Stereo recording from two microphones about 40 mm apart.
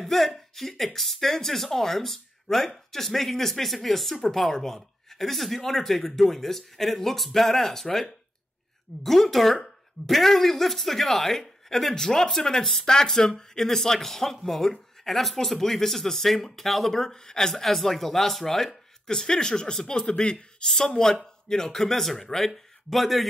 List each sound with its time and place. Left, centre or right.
0.0 s speech: centre
17.0 s speech: centre
19.0 s speech: centre